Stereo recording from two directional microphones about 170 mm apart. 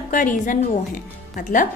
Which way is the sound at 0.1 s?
50° left (ahead or behind).